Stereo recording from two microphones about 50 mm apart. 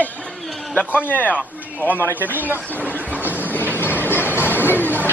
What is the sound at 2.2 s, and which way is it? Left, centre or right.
Speech, right.